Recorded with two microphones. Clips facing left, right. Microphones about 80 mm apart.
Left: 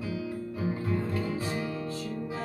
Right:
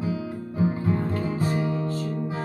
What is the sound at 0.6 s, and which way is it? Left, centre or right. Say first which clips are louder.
Music: right 7 dB; right.